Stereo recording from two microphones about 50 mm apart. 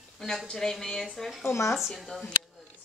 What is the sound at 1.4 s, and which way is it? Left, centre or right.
Speech, left.